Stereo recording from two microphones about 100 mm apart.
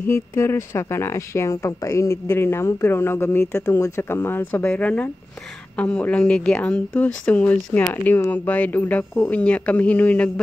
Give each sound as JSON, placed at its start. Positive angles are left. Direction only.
{"t": 0.0, "sound": "speech", "side_deg": 25}